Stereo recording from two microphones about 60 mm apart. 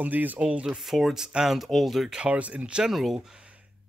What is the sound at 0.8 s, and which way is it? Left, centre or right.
Speech, centre.